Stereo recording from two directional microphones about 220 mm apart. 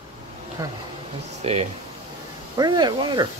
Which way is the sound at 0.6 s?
15° right (ahead or behind).